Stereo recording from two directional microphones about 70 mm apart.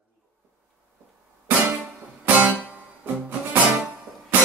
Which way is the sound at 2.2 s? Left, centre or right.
Right.